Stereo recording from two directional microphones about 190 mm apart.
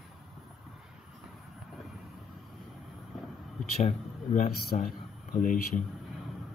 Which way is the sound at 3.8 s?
40° left (ahead or behind).